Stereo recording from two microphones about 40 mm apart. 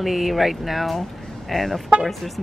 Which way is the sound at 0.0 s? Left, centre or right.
Centre.